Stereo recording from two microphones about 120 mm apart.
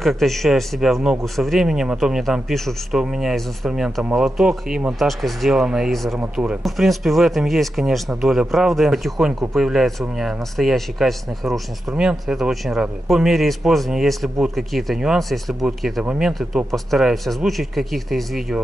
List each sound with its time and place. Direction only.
0.0 s speech: centre (ahead or behind)